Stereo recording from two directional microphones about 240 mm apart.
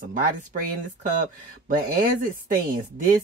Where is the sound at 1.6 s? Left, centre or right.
Right.